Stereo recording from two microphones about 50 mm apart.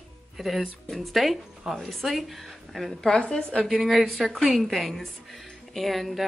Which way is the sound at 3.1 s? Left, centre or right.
Centre.